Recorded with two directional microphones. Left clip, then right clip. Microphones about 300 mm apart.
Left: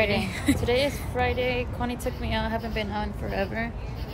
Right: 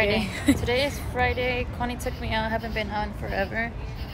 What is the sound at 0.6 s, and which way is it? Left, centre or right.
A woman's voice, centre.